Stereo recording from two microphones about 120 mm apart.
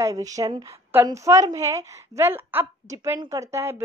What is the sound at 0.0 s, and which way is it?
A woman's voice, 30° right (ahead or behind).